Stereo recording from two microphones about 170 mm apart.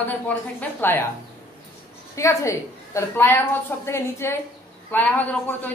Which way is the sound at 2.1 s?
15° left (ahead or behind).